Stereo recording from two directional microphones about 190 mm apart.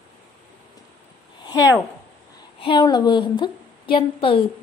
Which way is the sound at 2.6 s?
25° left (ahead or behind).